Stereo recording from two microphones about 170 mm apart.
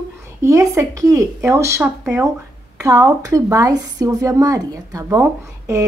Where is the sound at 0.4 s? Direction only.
20° right (ahead or behind).